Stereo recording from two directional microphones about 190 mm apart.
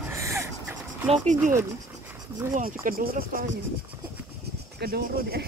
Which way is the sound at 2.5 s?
45° right (ahead or behind).